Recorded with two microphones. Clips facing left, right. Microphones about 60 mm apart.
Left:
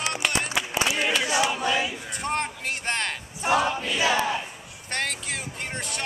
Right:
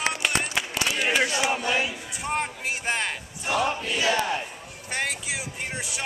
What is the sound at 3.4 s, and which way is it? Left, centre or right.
Choir, left.